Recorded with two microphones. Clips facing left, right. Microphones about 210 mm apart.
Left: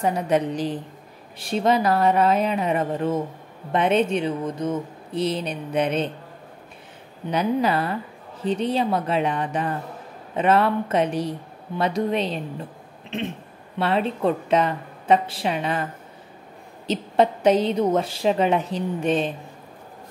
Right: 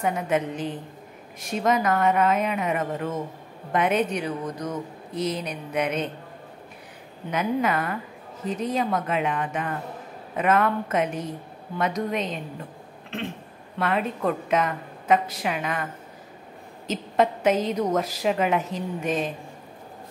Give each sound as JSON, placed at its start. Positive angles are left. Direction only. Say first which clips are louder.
{"t": 0.0, "sound": "a woman's voice", "louder": "left 3 dB", "side_deg": 35}
{"t": 7.2, "sound": "a woman's voice", "louder": "left 3 dB", "side_deg": 35}
{"t": 13.1, "sound": "a woman's voice", "louder": "left 3 dB", "side_deg": 20}